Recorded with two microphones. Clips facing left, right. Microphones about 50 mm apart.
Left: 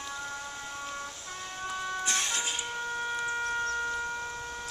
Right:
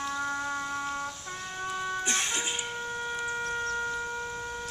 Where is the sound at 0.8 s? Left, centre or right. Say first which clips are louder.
Right 5 dB; centre.